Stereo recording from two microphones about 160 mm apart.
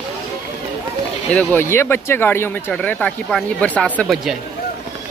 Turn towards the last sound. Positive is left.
turn(degrees=0)  # may be behind; listen again after turning